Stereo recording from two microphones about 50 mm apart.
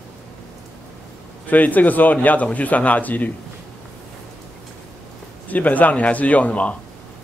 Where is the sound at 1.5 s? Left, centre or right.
Left.